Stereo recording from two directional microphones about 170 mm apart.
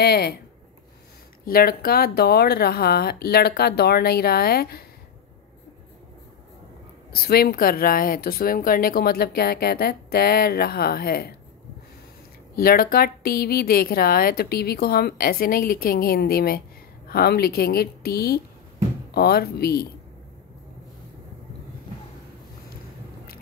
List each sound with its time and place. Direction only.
0.0 s speech: 70° left (ahead or behind)
1.4 s speech: 60° left (ahead or behind)
7.2 s speech: 65° left (ahead or behind)
12.5 s speech: 60° left (ahead or behind)